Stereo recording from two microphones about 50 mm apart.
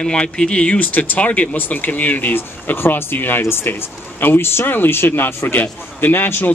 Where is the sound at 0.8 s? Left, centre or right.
Left.